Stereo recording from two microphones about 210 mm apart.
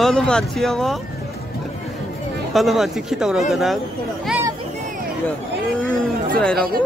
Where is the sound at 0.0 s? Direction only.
Centre (ahead or behind).